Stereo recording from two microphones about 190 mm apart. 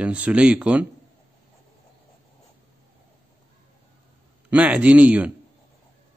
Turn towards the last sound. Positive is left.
turn(degrees=-5)  # may be behind; listen again after turning